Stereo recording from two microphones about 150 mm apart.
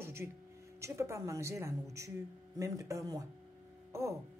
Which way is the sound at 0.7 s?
20° right (ahead or behind).